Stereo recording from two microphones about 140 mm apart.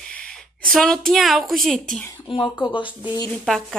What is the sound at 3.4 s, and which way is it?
Speech, centre (ahead or behind).